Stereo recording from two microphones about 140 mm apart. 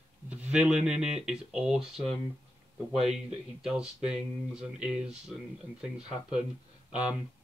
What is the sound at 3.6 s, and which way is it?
Speech, 5° right (ahead or behind).